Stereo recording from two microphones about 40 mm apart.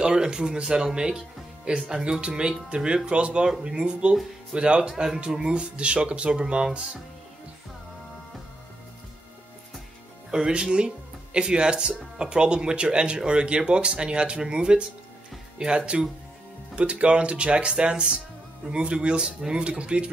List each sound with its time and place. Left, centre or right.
0.0 s speech: right
10.3 s speech: right
19.8 s speech: right